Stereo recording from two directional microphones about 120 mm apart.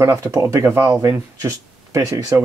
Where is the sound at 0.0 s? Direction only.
25° right (ahead or behind).